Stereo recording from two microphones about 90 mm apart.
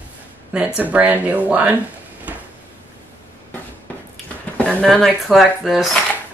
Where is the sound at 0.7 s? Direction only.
20° right (ahead or behind).